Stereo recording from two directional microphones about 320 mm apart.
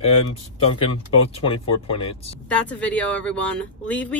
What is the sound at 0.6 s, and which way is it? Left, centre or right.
Speech, centre.